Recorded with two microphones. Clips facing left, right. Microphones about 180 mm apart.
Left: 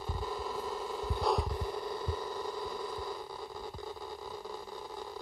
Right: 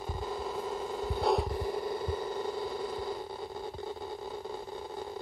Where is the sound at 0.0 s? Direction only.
20° right (ahead or behind).